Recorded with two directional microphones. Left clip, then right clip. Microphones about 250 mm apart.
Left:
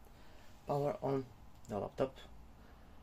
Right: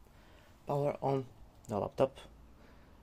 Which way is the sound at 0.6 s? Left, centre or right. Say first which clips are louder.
Right 3 dB; centre.